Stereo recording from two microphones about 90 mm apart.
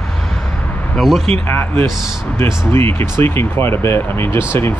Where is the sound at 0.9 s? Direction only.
5° left (ahead or behind).